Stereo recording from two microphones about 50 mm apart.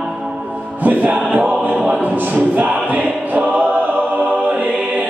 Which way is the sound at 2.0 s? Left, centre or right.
Right.